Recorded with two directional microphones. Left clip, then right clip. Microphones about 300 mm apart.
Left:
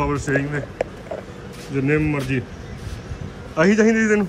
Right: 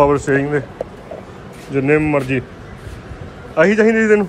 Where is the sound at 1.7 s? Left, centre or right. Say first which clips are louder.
Right 6 dB; centre.